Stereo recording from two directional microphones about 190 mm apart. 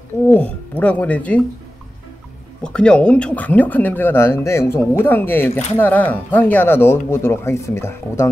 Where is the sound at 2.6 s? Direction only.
5° left (ahead or behind).